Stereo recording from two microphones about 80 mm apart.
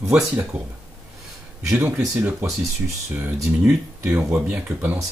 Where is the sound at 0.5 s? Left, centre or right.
Centre.